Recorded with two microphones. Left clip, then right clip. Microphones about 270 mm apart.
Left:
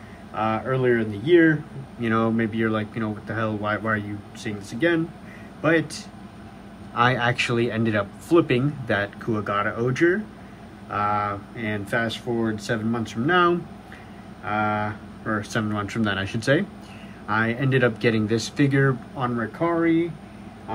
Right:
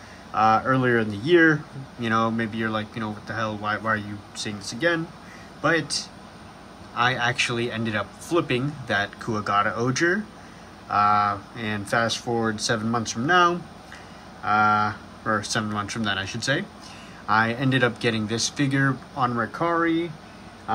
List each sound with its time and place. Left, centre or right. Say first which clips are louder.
0.3 s speech: right 5 dB; centre
7.0 s speech: left 1 dB; centre